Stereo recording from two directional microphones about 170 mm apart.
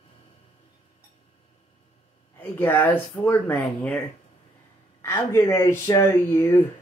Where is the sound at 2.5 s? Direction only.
10° left (ahead or behind).